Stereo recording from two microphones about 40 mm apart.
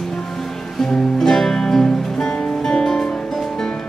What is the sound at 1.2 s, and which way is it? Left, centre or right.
Music, centre.